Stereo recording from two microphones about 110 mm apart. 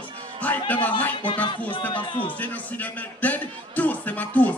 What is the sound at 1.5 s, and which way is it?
Speech, 45° left (ahead or behind).